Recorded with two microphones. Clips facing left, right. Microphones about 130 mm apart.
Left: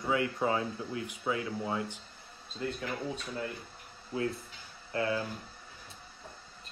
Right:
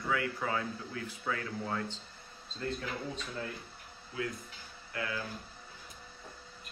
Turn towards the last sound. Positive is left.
turn(degrees=30)  # may be behind; listen again after turning